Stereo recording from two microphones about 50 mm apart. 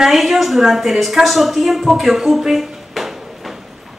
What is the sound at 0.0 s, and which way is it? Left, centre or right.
A woman's voice, centre.